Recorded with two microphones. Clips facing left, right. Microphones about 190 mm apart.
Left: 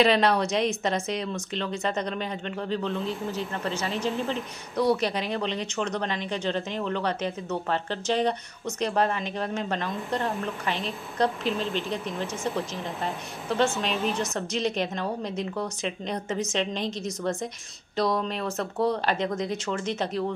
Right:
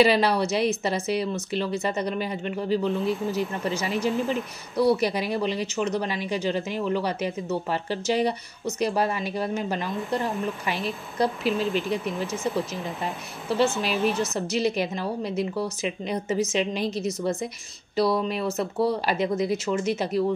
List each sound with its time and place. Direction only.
0.0 s speech: 5° right (ahead or behind)